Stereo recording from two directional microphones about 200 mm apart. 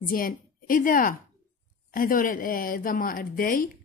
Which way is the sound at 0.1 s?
45° left (ahead or behind).